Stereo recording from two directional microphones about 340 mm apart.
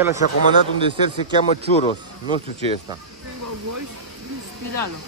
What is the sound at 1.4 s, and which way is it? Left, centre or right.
Speech, centre.